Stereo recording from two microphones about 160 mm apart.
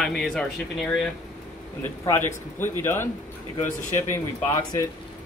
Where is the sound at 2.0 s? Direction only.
15° left (ahead or behind).